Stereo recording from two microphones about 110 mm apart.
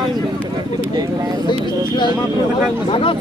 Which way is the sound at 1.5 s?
45° left (ahead or behind).